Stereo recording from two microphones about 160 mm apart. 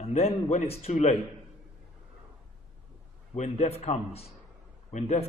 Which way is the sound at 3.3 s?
45° left (ahead or behind).